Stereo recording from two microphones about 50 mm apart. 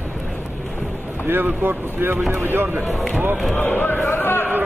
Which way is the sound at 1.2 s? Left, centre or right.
Right.